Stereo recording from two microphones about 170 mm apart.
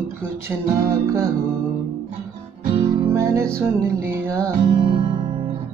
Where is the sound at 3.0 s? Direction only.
15° right (ahead or behind).